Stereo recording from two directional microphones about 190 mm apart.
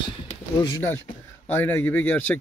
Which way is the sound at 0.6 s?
15° left (ahead or behind).